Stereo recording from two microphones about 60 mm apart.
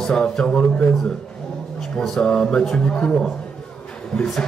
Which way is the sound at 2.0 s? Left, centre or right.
Centre.